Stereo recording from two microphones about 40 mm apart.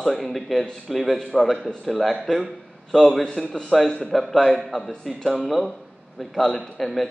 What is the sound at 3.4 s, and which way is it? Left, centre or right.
Speech, left.